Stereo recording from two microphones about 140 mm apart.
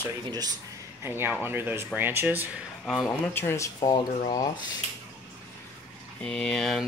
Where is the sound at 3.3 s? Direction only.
15° left (ahead or behind).